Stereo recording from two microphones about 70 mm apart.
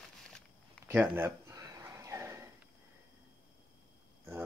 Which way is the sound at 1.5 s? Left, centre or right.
Right.